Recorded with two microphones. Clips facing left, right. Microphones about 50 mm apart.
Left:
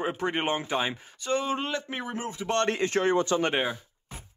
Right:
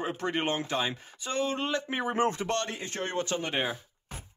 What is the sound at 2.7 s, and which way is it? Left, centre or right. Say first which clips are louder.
Speech: left 9 dB; left.